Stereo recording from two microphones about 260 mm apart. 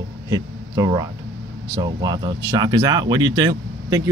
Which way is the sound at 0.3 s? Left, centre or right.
Centre.